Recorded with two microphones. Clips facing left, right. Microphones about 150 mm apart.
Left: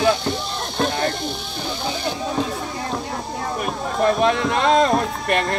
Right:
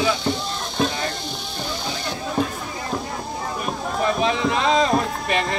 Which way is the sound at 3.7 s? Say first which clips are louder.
Left 3 dB; centre (ahead or behind).